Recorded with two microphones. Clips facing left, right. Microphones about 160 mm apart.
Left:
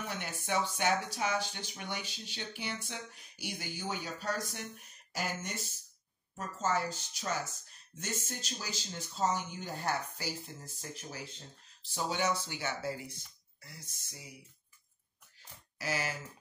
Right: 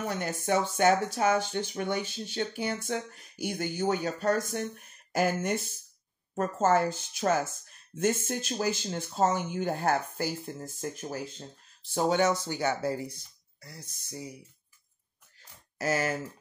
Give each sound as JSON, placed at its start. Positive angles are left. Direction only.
{"t": 0.0, "sound": "speech", "side_deg": -45}
{"t": 15.8, "sound": "speech", "side_deg": -50}